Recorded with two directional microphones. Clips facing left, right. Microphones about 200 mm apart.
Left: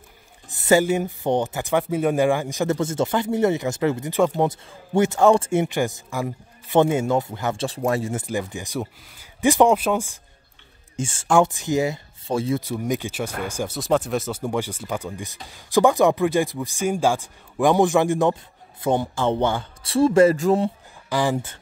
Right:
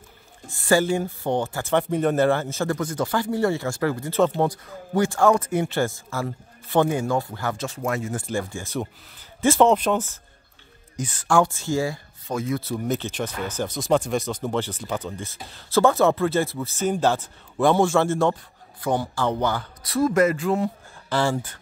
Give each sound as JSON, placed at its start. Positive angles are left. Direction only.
{"t": 0.5, "sound": "speech", "side_deg": 20}
{"t": 7.6, "sound": "speech", "side_deg": 35}
{"t": 8.3, "sound": "speech", "side_deg": 15}
{"t": 11.0, "sound": "speech", "side_deg": 25}
{"t": 12.5, "sound": "speech", "side_deg": 10}
{"t": 20.3, "sound": "speech", "side_deg": 40}
{"t": 21.1, "sound": "speech", "side_deg": 15}